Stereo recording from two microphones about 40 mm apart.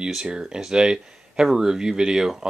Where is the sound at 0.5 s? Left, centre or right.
Centre.